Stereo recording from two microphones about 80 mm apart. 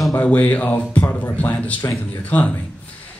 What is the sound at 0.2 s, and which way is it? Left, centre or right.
Speech, left.